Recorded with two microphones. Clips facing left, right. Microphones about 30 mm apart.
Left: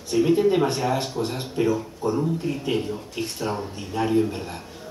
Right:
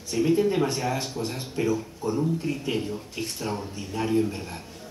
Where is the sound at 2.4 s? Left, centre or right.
Centre.